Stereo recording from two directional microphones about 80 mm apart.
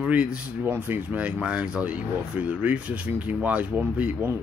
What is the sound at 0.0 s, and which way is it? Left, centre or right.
Speech, centre.